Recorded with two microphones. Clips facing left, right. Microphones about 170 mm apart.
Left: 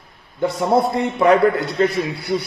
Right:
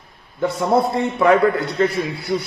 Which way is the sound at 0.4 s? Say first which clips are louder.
Even; 20° left (ahead or behind).